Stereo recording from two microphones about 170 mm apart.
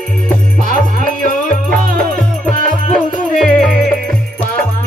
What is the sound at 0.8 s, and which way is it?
Music, 55° right (ahead or behind).